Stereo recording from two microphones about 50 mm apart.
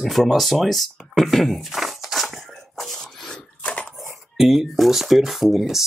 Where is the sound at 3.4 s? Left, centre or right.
Left.